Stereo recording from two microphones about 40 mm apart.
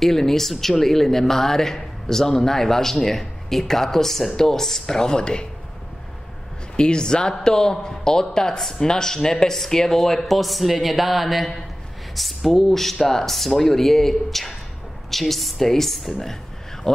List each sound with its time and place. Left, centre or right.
0.0 s speech: centre
6.8 s speech: centre